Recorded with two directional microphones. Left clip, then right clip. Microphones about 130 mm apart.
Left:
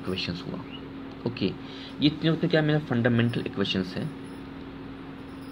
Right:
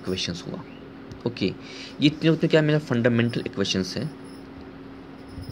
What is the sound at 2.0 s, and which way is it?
Speech, 60° right (ahead or behind).